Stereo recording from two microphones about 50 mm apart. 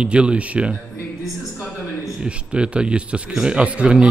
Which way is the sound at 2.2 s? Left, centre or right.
Right.